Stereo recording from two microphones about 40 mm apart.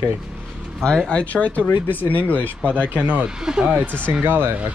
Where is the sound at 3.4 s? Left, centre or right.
Centre.